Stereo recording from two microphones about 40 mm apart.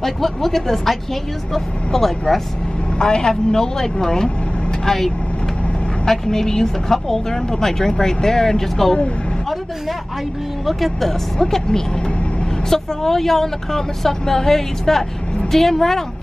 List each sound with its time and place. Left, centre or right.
0.0 s speech: centre
10.6 s speech: centre